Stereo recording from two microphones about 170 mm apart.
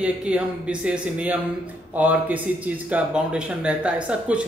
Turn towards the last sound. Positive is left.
turn(degrees=-5)  # may be behind; listen again after turning